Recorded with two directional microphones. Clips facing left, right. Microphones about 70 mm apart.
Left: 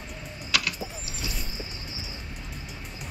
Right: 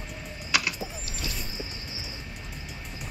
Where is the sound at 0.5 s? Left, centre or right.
Right.